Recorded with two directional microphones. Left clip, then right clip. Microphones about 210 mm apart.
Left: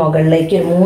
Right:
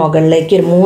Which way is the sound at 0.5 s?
50° right (ahead or behind).